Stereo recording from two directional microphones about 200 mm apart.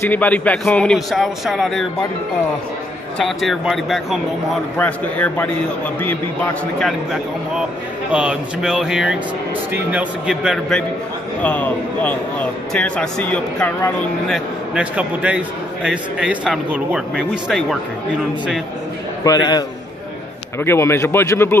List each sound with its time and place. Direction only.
0.0 s speech: 10° left (ahead or behind)
3.2 s speech: centre (ahead or behind)
6.8 s speech: centre (ahead or behind)
19.2 s a man's voice: 20° left (ahead or behind)